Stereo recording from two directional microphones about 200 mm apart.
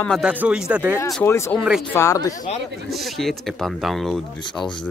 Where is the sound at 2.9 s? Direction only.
Centre (ahead or behind).